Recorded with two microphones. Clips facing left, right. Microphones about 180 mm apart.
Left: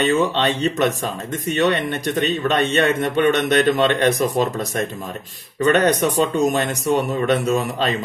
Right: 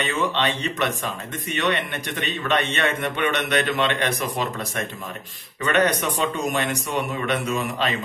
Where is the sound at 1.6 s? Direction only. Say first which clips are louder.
Left 5 dB; 40° left (ahead or behind).